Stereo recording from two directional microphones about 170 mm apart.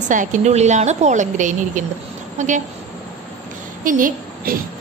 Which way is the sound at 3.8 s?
55° right (ahead or behind).